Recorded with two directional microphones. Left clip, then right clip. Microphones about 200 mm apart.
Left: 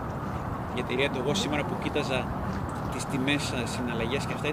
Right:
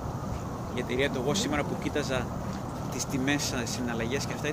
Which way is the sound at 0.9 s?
25° right (ahead or behind).